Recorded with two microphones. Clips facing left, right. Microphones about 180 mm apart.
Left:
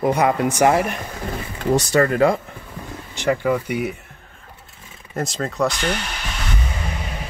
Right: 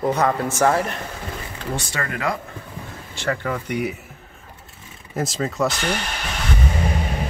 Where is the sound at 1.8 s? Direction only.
35° left (ahead or behind).